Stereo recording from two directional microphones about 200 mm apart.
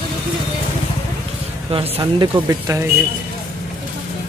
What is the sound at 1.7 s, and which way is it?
Speech, 30° right (ahead or behind).